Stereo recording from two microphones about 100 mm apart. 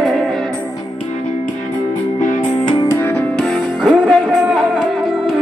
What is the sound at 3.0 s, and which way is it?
Music, 20° left (ahead or behind).